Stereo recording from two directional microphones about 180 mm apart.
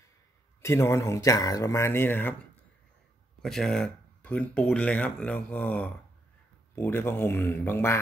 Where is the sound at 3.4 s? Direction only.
Centre (ahead or behind).